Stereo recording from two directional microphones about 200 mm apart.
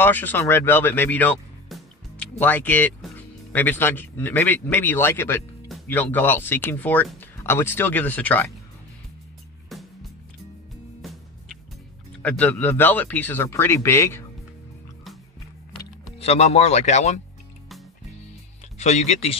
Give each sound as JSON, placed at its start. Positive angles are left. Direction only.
{"t": 0.0, "sound": "speech", "side_deg": 10}
{"t": 12.2, "sound": "speech", "side_deg": 5}
{"t": 16.2, "sound": "speech", "side_deg": 30}
{"t": 18.8, "sound": "speech", "side_deg": 35}